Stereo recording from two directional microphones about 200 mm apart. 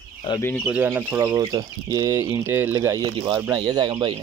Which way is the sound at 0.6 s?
5° right (ahead or behind).